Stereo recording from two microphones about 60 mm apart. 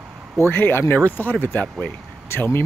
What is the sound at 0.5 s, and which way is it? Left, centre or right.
Speech, left.